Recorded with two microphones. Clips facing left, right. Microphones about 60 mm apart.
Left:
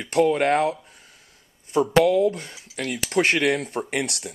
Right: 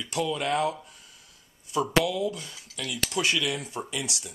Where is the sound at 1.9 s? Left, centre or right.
Left.